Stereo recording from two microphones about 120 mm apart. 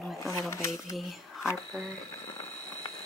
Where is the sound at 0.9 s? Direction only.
5° right (ahead or behind).